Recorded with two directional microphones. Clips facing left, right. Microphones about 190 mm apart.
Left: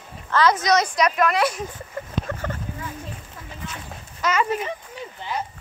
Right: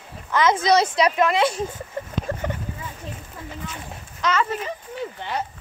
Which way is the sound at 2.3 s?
30° right (ahead or behind).